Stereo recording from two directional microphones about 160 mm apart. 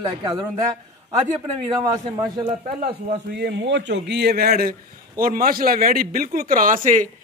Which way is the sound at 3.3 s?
90° right.